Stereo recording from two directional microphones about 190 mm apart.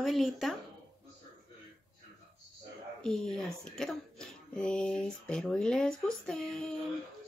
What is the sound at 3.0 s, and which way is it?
Speech, 5° left (ahead or behind).